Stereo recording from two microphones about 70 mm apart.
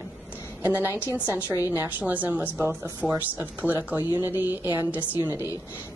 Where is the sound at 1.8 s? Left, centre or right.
Right.